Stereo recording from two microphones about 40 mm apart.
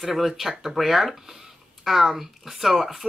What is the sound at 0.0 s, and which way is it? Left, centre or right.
Speech, centre.